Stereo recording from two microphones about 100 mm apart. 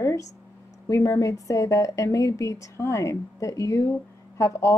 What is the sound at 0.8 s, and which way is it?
A woman's voice, 30° left (ahead or behind).